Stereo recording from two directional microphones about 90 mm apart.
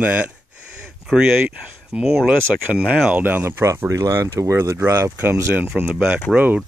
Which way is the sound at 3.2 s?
25° right (ahead or behind).